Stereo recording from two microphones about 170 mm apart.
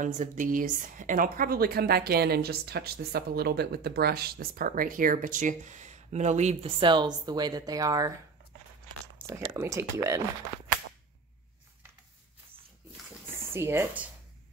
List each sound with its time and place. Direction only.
0.0 s a woman's voice: 50° right (ahead or behind); by 8.1 s 20° right (ahead or behind)
9.3 s speech: 20° right (ahead or behind)
13.5 s speech: 15° right (ahead or behind)